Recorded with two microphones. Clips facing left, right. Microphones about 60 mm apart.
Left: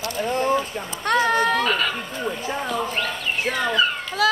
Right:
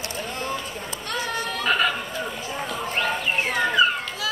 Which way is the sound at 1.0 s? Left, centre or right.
Left.